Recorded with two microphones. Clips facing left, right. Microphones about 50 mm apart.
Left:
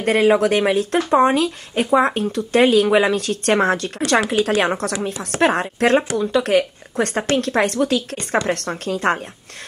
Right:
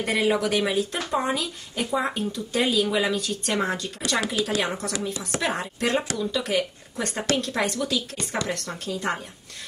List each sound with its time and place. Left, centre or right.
0.0 s speech: left